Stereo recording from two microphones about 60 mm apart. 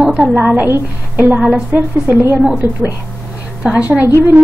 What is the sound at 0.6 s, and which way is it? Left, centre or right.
Speech, right.